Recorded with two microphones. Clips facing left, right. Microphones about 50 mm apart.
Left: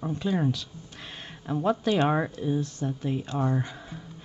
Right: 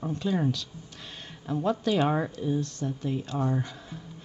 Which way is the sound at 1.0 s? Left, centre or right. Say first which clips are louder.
Left 4 dB; centre.